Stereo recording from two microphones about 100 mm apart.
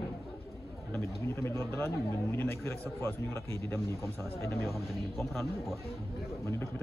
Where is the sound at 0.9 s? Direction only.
25° left (ahead or behind).